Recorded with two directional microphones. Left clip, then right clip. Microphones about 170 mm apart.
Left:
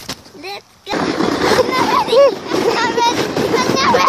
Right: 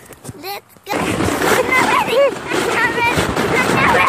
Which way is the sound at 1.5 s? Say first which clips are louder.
Right 2 dB; 10° left (ahead or behind).